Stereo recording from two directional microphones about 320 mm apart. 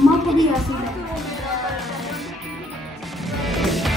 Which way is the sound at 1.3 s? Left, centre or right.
Centre.